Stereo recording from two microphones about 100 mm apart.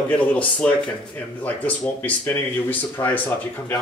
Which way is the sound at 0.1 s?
15° left (ahead or behind).